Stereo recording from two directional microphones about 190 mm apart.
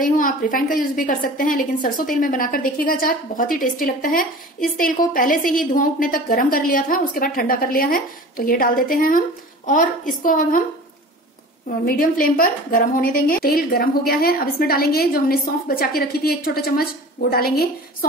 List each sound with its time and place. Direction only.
0.0 s a woman's voice: 45° left (ahead or behind)
11.8 s a woman's voice: 50° left (ahead or behind)